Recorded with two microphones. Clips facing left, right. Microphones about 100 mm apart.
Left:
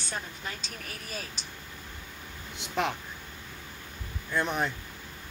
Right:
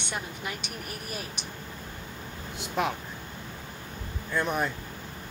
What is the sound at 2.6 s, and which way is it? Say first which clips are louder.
Speech: right 1 dB; 5° right (ahead or behind).